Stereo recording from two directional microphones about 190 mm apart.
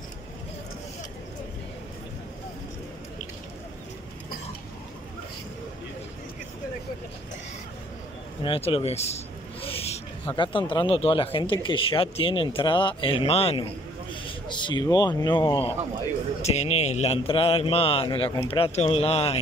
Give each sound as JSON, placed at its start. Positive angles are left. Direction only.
{"t": 8.5, "sound": "a man's voice", "side_deg": 30}